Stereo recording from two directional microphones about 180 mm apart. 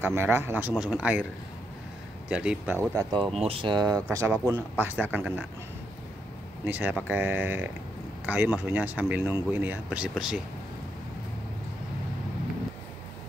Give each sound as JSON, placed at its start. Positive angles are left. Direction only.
{"t": 0.0, "sound": "speech", "side_deg": -15}
{"t": 2.2, "sound": "speech", "side_deg": -5}
{"t": 6.6, "sound": "speech", "side_deg": -10}